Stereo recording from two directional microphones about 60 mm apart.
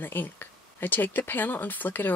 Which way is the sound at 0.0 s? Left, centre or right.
Left.